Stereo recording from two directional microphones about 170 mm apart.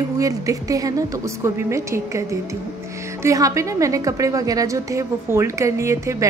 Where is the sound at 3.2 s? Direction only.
20° right (ahead or behind).